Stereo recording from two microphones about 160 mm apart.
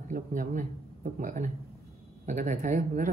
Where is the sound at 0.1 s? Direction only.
55° right (ahead or behind).